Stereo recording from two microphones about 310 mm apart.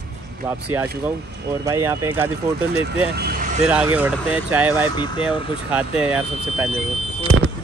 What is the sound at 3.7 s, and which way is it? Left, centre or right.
Speech, centre.